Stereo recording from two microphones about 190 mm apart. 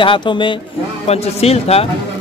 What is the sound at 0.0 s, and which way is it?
A man's voice, 25° left (ahead or behind).